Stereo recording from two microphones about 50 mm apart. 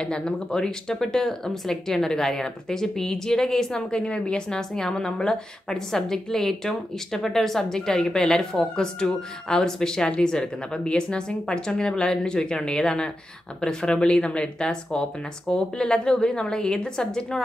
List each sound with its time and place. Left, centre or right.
0.0 s speech: centre